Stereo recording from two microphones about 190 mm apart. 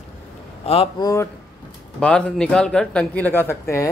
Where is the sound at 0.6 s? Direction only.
30° left (ahead or behind).